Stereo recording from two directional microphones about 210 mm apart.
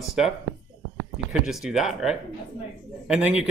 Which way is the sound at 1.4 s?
Centre (ahead or behind).